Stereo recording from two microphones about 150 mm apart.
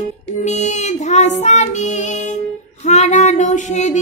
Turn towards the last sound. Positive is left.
turn(degrees=50)  # may be behind; listen again after turning